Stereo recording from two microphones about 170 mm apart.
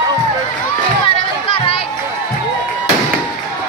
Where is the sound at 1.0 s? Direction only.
30° left (ahead or behind).